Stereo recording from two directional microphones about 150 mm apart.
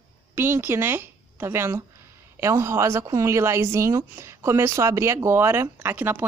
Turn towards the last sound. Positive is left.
turn(degrees=-15)  # may be behind; listen again after turning